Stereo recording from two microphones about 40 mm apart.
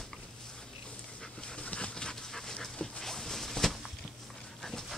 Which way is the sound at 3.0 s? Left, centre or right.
Centre.